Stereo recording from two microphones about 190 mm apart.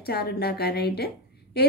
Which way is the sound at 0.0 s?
55° left (ahead or behind).